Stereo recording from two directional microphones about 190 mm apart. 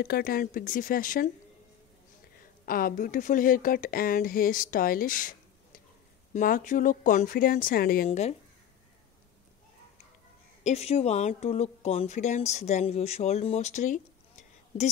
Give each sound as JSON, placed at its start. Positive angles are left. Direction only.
{"t": 0.0, "sound": "speech", "side_deg": 50}
{"t": 2.6, "sound": "speech", "side_deg": 50}
{"t": 8.1, "sound": "speech", "side_deg": 35}
{"t": 10.6, "sound": "speech", "side_deg": 35}